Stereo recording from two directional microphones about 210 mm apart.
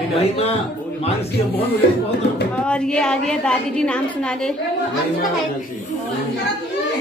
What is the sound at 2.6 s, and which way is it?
A woman's voice, 5° left (ahead or behind).